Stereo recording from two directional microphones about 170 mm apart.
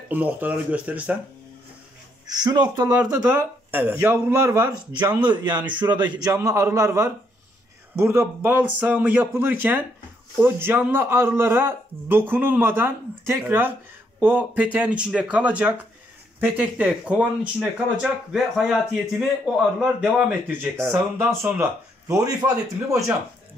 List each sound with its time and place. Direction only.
0.1 s speech: 10° right (ahead or behind)
2.2 s a man's voice: 25° right (ahead or behind)
3.2 s speech: 10° right (ahead or behind)
5.2 s a man's voice: 25° right (ahead or behind)